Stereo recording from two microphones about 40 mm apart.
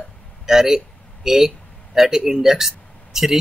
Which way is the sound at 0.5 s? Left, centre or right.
Centre.